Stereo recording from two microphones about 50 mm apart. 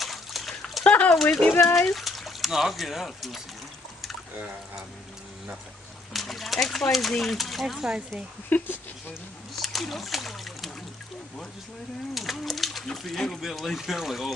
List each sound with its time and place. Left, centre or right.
0.0 s dog: centre
0.8 s a sound: left
1.8 s speech: centre
6.1 s speech: centre
8.5 s speech: left
9.6 s speech: centre
12.1 s speech: centre